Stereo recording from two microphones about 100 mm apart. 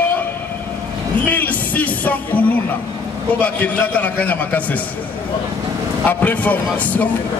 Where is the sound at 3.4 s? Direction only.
15° left (ahead or behind).